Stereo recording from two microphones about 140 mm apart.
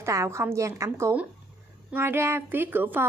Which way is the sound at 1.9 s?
15° right (ahead or behind).